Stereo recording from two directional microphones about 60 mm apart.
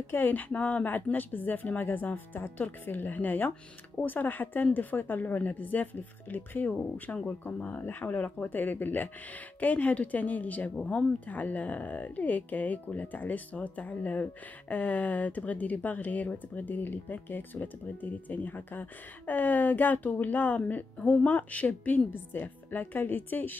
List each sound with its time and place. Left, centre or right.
0.1 s speech: left